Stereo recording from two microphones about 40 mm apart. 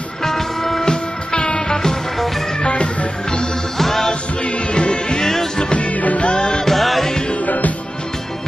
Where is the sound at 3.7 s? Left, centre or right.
Centre.